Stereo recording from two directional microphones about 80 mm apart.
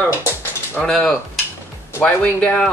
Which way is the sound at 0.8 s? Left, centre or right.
Centre.